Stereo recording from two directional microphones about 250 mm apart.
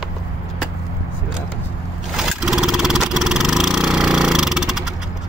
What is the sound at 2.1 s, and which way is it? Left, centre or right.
Vehicle, centre.